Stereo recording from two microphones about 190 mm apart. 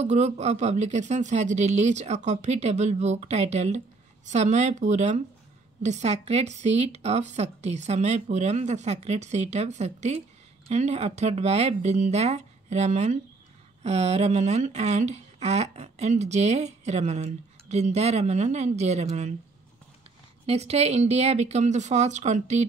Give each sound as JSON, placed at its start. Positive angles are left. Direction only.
{"t": 0.0, "sound": "speech", "side_deg": -35}
{"t": 20.4, "sound": "speech", "side_deg": -35}